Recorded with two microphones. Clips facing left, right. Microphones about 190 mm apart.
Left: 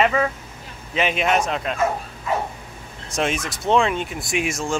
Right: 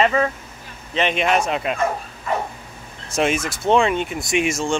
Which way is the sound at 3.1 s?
Centre (ahead or behind).